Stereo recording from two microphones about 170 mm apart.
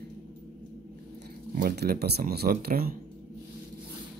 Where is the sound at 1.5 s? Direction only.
65° right (ahead or behind).